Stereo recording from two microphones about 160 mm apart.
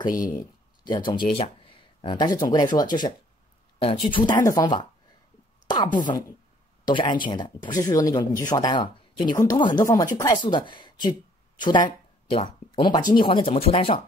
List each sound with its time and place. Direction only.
0.4 s speech: 25° left (ahead or behind)
6.0 s speech: 20° left (ahead or behind)